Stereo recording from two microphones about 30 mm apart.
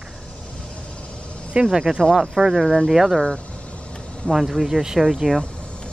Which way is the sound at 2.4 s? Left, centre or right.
Centre.